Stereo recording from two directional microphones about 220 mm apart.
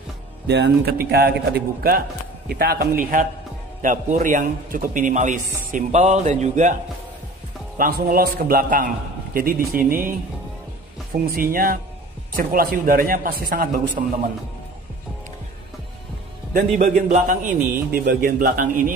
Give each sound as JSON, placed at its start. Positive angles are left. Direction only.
{"t": 0.5, "sound": "a man's voice", "side_deg": -45}
{"t": 11.3, "sound": "a man's voice", "side_deg": -40}
{"t": 16.5, "sound": "a man's voice", "side_deg": -40}